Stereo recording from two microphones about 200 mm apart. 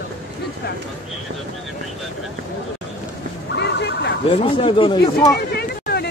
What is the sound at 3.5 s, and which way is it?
Vehicle, 60° left (ahead or behind).